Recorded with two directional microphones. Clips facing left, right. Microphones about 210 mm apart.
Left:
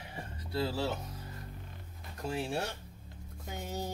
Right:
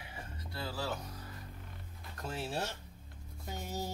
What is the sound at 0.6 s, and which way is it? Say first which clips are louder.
Speech: left 6 dB; 25° left (ahead or behind).